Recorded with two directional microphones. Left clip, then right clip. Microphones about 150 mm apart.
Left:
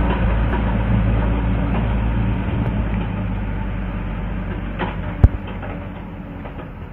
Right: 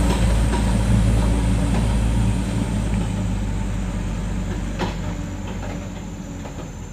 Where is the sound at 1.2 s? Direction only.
25° right (ahead or behind).